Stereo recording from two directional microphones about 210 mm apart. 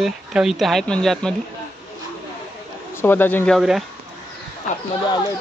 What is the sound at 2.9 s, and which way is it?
Speech, 10° left (ahead or behind).